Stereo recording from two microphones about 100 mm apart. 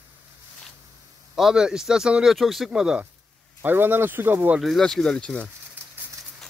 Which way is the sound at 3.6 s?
20° right (ahead or behind).